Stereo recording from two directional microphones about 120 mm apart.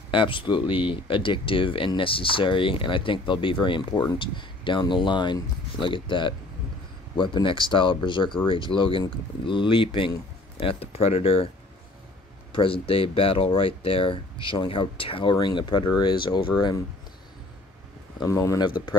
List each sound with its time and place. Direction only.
0.1 s speech: 45° left (ahead or behind)
12.5 s speech: 50° left (ahead or behind)
16.5 s speech: 30° left (ahead or behind)
18.2 s speech: 25° left (ahead or behind)
18.7 s speech: 40° left (ahead or behind)